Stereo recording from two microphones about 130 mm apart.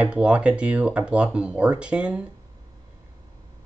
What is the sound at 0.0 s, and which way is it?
Speech, 10° right (ahead or behind).